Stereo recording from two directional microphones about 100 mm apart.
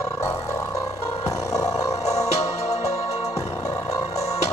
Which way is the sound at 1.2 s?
30° left (ahead or behind).